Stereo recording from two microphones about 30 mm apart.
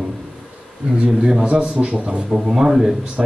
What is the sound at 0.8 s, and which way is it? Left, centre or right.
A man's voice, right.